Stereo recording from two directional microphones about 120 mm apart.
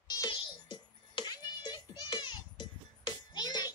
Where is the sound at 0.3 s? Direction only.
40° left (ahead or behind).